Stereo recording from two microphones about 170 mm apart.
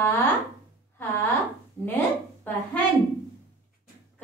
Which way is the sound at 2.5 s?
10° left (ahead or behind).